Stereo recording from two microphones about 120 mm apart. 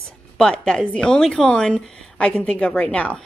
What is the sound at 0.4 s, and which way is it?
A woman's voice, 5° left (ahead or behind).